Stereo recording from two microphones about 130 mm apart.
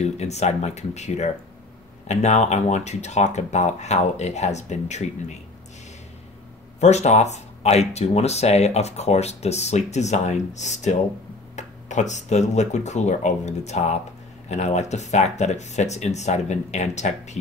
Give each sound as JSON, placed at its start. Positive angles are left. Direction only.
{"t": 0.0, "sound": "speech", "side_deg": 60}
{"t": 6.8, "sound": "speech", "side_deg": 60}